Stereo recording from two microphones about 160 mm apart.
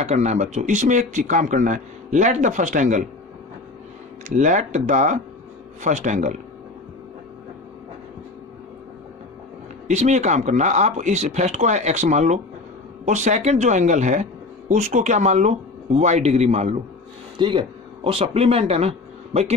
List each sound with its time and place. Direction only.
0.0 s a man's voice: 45° right (ahead or behind)
4.4 s a man's voice: 50° right (ahead or behind)
9.8 s a man's voice: 45° right (ahead or behind)
17.4 s speech: 30° right (ahead or behind)